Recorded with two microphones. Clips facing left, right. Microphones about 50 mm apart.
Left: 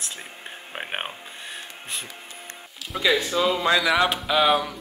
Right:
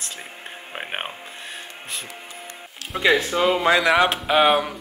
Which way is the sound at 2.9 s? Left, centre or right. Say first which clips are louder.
Right 3 dB; right.